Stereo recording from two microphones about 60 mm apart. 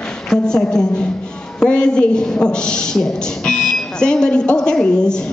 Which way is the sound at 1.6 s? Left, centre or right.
Centre.